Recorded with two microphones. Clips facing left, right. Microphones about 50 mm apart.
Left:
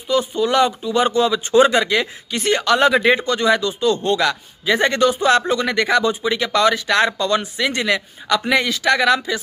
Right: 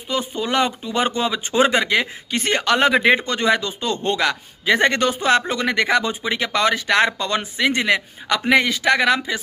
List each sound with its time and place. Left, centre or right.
0.3 s a man's voice: right